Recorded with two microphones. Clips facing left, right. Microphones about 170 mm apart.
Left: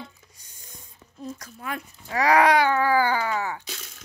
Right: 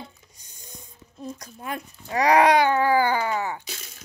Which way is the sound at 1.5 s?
30° right (ahead or behind).